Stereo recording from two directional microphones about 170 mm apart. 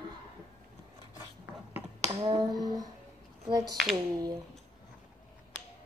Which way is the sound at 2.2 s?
25° right (ahead or behind).